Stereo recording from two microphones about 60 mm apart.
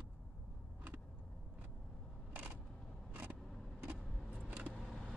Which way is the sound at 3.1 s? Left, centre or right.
Right.